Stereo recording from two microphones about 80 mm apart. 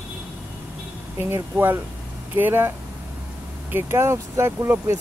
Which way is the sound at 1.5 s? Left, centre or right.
Right.